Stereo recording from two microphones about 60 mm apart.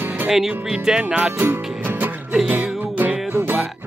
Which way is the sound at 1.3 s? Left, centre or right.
Right.